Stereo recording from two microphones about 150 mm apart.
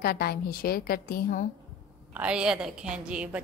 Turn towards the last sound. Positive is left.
turn(degrees=-10)  # may be behind; listen again after turning